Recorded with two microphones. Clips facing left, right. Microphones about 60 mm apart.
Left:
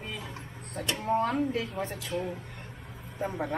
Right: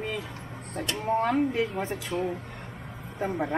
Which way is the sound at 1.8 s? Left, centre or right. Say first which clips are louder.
Right 3 dB; right.